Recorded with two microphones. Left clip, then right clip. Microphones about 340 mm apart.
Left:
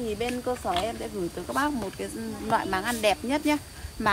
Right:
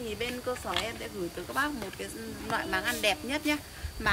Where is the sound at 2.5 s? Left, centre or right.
Centre.